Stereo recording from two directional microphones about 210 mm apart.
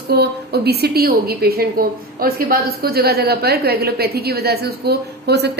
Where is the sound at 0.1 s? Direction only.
50° right (ahead or behind).